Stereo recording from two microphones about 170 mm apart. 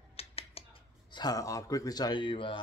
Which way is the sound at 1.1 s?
20° left (ahead or behind).